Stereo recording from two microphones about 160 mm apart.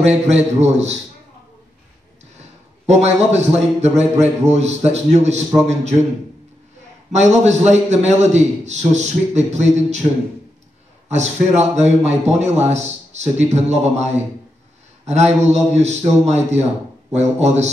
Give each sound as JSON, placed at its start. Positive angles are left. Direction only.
{"t": 0.0, "sound": "a man's voice", "side_deg": -45}
{"t": 2.9, "sound": "a man's voice", "side_deg": -45}
{"t": 7.1, "sound": "a man's voice", "side_deg": -45}
{"t": 11.1, "sound": "a man's voice", "side_deg": -45}
{"t": 15.0, "sound": "a man's voice", "side_deg": -45}